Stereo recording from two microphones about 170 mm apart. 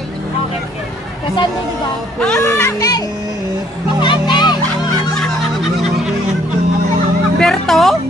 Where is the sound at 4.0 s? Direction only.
25° left (ahead or behind).